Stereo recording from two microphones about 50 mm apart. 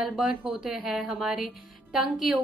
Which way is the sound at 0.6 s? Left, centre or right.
Centre.